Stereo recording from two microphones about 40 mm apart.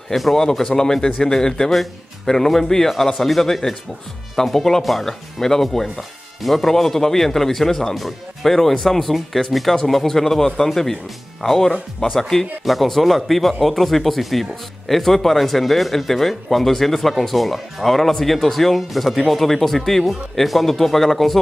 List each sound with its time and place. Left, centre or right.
0.1 s speech: centre